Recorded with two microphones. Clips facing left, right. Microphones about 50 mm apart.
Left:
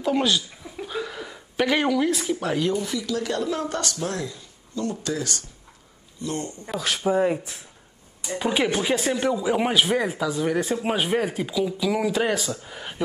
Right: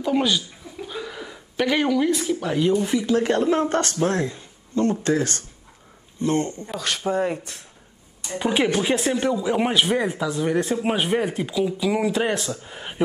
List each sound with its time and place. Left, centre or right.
0.0 s speech: centre
0.7 s a sound: centre
2.1 s speech: centre
2.8 s speech: right
6.7 s speech: centre